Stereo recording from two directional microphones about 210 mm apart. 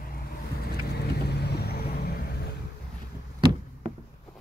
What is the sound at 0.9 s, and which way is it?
Vehicle, 50° left (ahead or behind).